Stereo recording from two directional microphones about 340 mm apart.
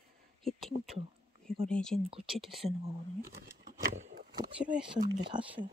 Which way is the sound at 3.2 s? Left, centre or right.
Right.